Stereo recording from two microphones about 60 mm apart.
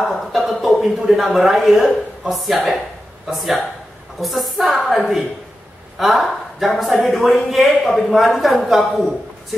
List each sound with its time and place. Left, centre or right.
0.0 s speech: centre